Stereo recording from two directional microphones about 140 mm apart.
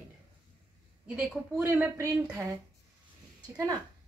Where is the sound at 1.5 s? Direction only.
15° right (ahead or behind).